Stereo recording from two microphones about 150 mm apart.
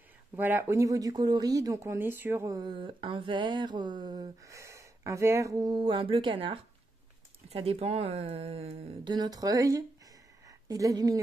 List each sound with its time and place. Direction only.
0.4 s speech: 10° right (ahead or behind); by 9.1 s 40° right (ahead or behind)
9.1 s a woman's voice: 25° right (ahead or behind)